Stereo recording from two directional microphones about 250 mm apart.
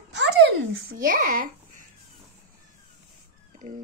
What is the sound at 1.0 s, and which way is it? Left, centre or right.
Speech, right.